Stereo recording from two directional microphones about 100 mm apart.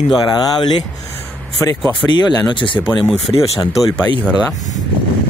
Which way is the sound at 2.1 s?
50° left (ahead or behind).